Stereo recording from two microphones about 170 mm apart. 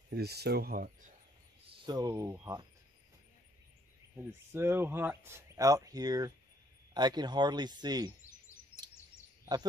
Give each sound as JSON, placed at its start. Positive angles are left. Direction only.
{"t": 0.1, "sound": "speech", "side_deg": -70}
{"t": 1.9, "sound": "speech", "side_deg": -20}
{"t": 4.1, "sound": "speech", "side_deg": -15}